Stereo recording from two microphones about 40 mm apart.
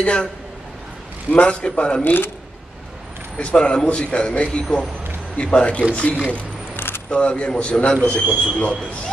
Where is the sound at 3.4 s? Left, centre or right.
Left.